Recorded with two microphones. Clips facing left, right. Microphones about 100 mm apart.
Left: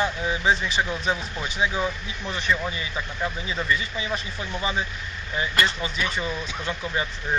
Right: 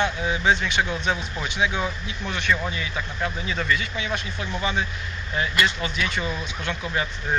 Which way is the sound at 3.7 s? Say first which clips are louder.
Right 1 dB; 35° left (ahead or behind).